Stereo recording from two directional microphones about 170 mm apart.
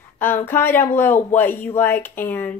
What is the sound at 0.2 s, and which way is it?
Speech, 15° left (ahead or behind).